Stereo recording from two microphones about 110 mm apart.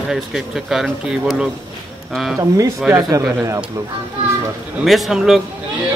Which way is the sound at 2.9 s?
30° right (ahead or behind).